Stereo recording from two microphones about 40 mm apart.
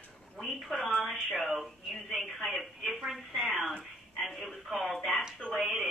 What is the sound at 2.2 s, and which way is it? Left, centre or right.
A woman's voice, centre.